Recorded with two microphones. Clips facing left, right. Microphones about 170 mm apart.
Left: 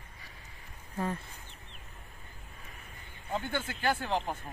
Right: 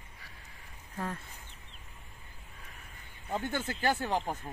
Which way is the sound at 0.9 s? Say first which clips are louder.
Left 4 dB; 5° left (ahead or behind).